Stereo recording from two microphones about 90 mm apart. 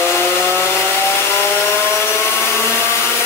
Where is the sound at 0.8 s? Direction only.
25° left (ahead or behind).